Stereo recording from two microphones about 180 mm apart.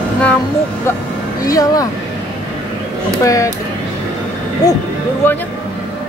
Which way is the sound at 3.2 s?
15° left (ahead or behind).